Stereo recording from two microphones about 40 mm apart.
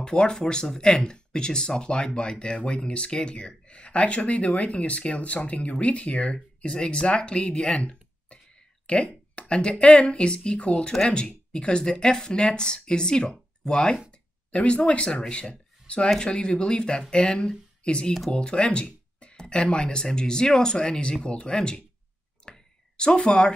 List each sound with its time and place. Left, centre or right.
0.0 s speech: centre
14.5 s speech: left
22.4 s a sound: left